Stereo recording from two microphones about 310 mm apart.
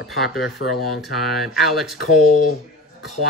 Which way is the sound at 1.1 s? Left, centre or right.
Centre.